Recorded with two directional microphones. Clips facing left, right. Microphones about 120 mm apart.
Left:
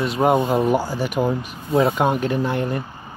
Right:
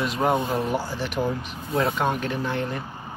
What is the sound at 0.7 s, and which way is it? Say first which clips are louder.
Speech: left 5 dB; 10° left (ahead or behind).